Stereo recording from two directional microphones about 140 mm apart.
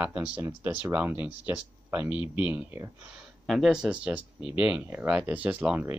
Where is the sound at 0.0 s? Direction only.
10° right (ahead or behind).